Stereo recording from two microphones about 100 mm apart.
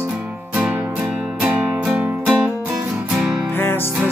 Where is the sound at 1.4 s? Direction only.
15° right (ahead or behind).